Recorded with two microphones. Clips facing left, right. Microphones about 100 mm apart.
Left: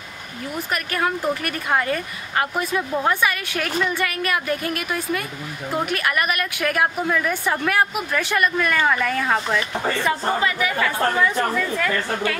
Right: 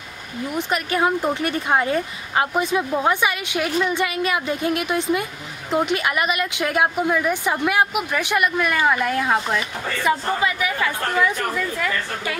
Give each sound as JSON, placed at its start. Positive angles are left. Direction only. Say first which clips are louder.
{"t": 0.6, "sound": "a woman's voice", "louder": "right 3 dB", "side_deg": -20}